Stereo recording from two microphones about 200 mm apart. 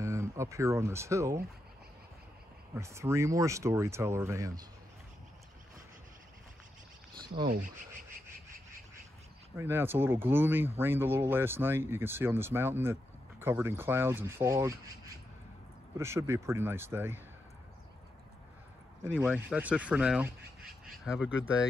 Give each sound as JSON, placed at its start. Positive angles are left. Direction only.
{"t": 0.0, "sound": "speech", "side_deg": -15}
{"t": 2.7, "sound": "speech", "side_deg": -15}
{"t": 7.4, "sound": "speech", "side_deg": -45}
{"t": 9.6, "sound": "speech", "side_deg": -10}
{"t": 16.0, "sound": "speech", "side_deg": -15}
{"t": 19.1, "sound": "speech", "side_deg": -10}